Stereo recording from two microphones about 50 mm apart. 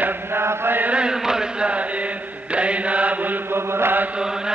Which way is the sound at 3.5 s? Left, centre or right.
Right.